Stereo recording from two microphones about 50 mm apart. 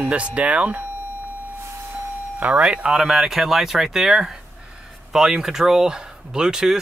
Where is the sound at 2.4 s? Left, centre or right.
Right.